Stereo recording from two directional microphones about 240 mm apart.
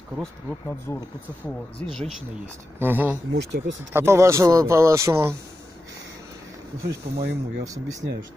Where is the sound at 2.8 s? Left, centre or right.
Centre.